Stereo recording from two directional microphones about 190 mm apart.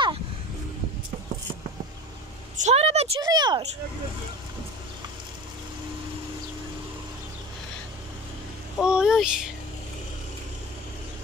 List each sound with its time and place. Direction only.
2.5 s vehicle: 35° right (ahead or behind)
3.2 s speech: 20° right (ahead or behind)
8.7 s a sound: 5° right (ahead or behind)